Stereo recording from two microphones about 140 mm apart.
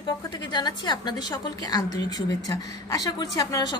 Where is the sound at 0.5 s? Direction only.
30° left (ahead or behind).